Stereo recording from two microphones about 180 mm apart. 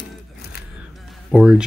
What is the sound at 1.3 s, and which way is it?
Speech, 5° right (ahead or behind).